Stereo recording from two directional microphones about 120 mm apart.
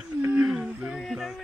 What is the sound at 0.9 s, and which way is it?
Music, centre (ahead or behind).